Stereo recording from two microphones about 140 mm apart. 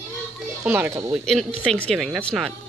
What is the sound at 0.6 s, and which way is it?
Speech, 15° right (ahead or behind).